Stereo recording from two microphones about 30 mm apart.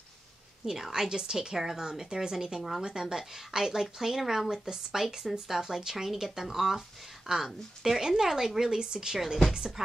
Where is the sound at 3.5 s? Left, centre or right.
Centre.